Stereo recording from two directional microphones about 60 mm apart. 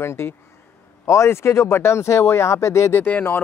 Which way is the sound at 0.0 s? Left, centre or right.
Left.